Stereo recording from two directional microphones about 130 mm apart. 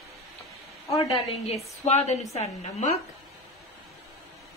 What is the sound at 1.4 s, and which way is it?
A woman's voice, 55° left (ahead or behind).